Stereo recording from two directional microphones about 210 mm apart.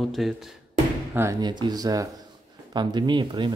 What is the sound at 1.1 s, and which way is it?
Speech, 15° right (ahead or behind).